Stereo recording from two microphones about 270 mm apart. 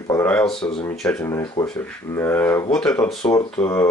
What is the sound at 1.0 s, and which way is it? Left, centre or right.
Speech, centre.